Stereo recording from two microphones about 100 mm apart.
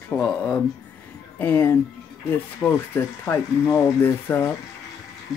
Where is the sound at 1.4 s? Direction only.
20° left (ahead or behind).